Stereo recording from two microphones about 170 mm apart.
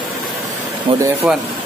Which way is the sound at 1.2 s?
5° right (ahead or behind).